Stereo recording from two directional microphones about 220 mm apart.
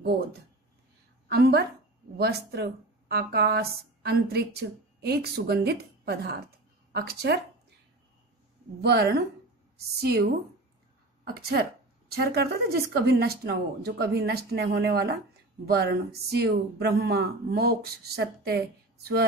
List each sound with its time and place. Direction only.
1.3 s speech: 45° right (ahead or behind)
8.8 s speech: 45° right (ahead or behind)
11.2 s speech: 45° right (ahead or behind)